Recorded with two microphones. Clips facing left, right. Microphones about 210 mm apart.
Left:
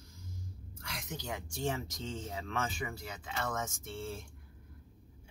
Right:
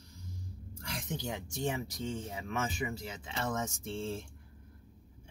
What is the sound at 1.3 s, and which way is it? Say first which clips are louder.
Speech: left 1 dB; 20° right (ahead or behind).